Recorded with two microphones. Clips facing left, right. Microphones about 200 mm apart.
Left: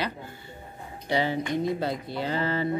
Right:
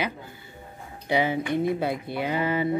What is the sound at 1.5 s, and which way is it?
Speech, 60° right (ahead or behind).